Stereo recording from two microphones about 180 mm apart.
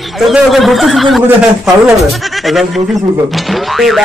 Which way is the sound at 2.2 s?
Centre (ahead or behind).